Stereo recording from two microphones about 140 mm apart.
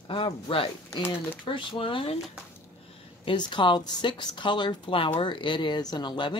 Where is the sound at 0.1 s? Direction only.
40° left (ahead or behind).